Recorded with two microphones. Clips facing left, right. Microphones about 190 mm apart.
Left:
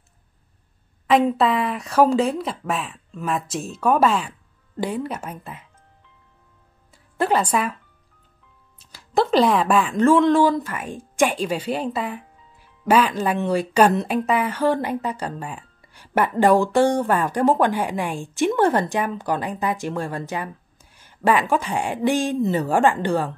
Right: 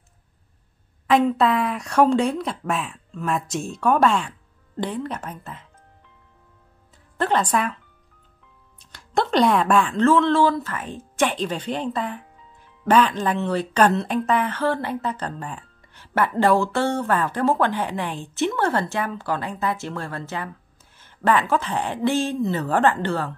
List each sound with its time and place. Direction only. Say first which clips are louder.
1.0 s a woman's voice: even; centre (ahead or behind)
7.2 s a woman's voice: left 1 dB; 10° left (ahead or behind)
8.7 s a woman's voice: left 3 dB; 5° left (ahead or behind)